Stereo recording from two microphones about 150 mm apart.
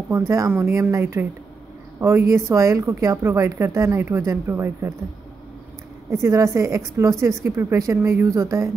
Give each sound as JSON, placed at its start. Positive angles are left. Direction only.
{"t": 0.1, "sound": "speech", "side_deg": -20}
{"t": 6.0, "sound": "speech", "side_deg": -20}